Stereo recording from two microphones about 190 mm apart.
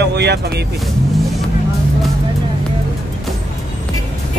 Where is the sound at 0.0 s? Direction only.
60° right (ahead or behind).